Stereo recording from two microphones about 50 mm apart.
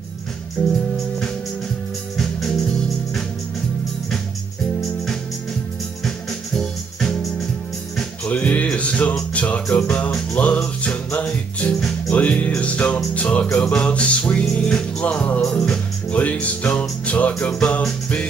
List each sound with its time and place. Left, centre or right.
0.6 s music: centre
6.0 s music: centre
8.3 s music: left
15.0 s speech: left
16.1 s music: left